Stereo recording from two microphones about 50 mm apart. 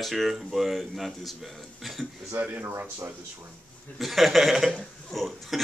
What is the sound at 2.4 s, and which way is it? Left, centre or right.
Speech, right.